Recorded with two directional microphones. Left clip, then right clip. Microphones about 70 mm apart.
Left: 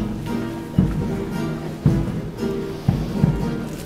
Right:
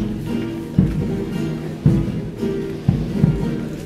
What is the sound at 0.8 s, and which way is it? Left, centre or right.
Music, left.